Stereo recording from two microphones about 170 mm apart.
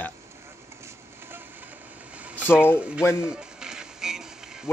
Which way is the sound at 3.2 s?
5° right (ahead or behind).